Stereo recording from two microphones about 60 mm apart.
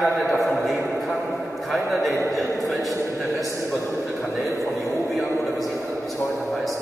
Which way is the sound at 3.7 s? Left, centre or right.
Left.